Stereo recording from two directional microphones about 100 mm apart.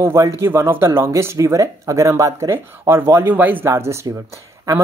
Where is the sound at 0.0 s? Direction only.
30° right (ahead or behind).